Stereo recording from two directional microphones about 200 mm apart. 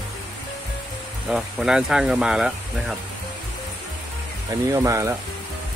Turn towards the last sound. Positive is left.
turn(degrees=-15)  # may be behind; listen again after turning